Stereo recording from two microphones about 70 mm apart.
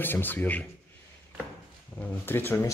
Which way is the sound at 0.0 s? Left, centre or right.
Left.